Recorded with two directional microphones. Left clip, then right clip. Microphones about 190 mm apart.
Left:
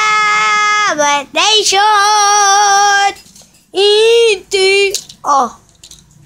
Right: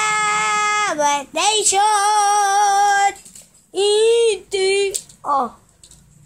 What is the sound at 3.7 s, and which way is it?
Child singing, 10° left (ahead or behind).